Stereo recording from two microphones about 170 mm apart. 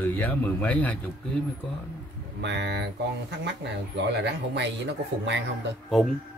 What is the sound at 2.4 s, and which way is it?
Speech, 90° right.